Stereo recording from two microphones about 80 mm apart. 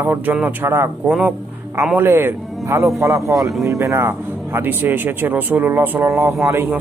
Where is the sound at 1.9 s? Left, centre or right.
Right.